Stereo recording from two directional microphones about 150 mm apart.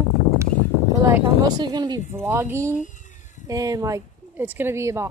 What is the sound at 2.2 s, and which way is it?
Speech, 15° right (ahead or behind).